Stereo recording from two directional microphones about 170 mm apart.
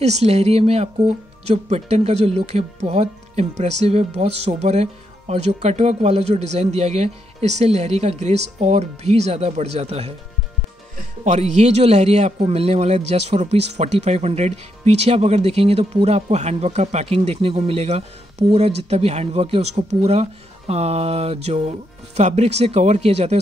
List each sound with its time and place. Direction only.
0.0 s a man's voice: 40° right (ahead or behind)
11.2 s a man's voice: 40° right (ahead or behind)